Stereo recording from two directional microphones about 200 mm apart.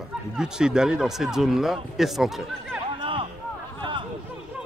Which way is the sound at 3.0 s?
25° right (ahead or behind).